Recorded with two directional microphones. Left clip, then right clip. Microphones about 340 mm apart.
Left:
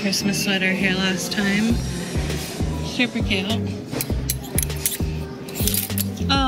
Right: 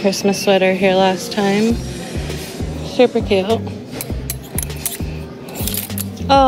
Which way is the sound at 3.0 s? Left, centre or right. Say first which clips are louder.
Right 10 dB; centre.